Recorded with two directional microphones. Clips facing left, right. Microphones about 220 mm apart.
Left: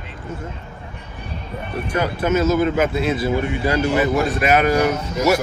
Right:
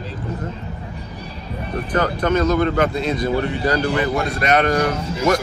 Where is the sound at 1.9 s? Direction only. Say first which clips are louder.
Right 1 dB; 10° left (ahead or behind).